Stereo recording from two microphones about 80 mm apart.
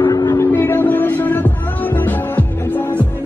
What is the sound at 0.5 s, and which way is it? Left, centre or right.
Music, left.